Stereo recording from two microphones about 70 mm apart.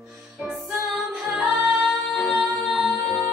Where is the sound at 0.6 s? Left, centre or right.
Centre.